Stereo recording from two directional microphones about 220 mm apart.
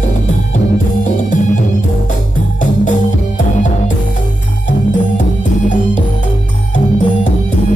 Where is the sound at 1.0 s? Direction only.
35° left (ahead or behind).